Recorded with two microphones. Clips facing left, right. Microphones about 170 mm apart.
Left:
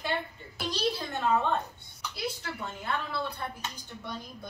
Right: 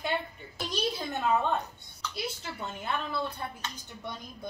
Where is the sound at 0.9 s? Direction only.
15° right (ahead or behind).